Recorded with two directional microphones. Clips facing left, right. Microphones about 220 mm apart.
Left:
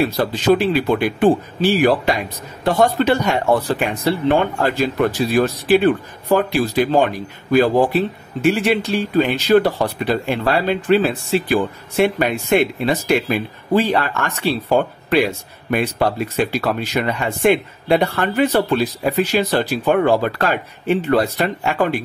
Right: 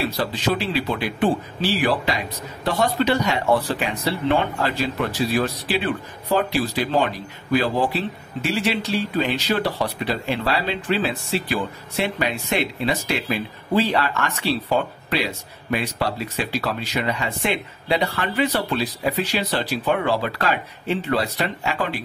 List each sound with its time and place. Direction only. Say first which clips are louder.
0.0 s speech: left 6 dB; 50° left (ahead or behind)